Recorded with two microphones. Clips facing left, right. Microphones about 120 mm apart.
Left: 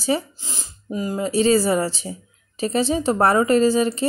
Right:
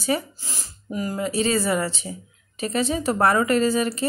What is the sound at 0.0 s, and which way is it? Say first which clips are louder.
Speech: left 2 dB; 25° left (ahead or behind).